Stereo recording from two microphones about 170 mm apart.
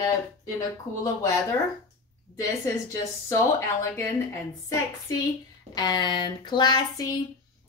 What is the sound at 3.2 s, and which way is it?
Speech, 15° left (ahead or behind).